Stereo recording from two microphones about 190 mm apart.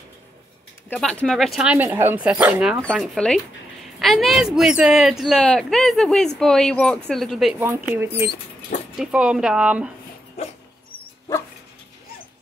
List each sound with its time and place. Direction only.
0.8 s speech: 5° left (ahead or behind)
10.4 s dog: 35° left (ahead or behind)